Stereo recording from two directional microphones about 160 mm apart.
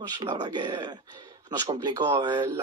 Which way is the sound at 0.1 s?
25° right (ahead or behind).